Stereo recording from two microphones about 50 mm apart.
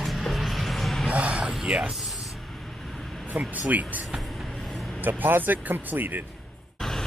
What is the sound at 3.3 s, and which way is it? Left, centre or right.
Speech, right.